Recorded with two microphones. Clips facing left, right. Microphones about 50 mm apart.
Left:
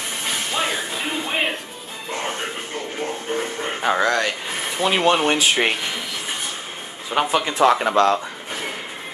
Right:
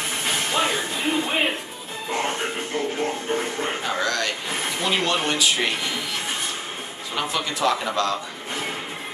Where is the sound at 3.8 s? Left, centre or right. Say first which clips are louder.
Left 9 dB; left.